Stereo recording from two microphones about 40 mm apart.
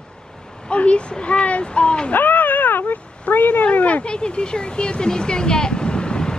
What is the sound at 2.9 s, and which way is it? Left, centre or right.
Speech, left.